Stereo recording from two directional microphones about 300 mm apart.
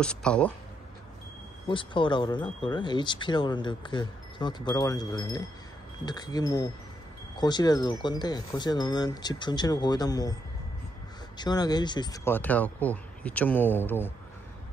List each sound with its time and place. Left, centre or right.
0.0 s speech: centre
1.7 s speech: centre
11.3 s speech: centre